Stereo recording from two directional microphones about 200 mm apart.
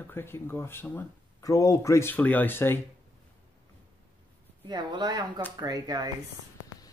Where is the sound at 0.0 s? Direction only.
10° left (ahead or behind).